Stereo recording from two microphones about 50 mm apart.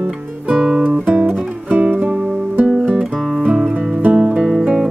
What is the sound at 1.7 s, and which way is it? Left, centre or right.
Music, right.